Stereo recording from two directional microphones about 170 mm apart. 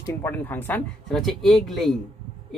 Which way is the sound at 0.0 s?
15° left (ahead or behind).